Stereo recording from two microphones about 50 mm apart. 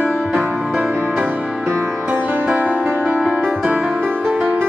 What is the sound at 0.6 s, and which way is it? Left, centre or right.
Music, centre.